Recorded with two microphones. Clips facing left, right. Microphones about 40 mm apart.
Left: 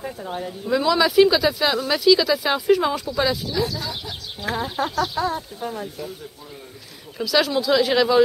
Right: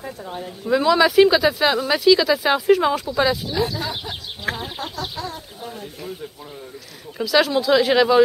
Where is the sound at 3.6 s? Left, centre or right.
Right.